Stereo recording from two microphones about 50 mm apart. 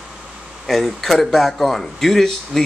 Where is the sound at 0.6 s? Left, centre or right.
Centre.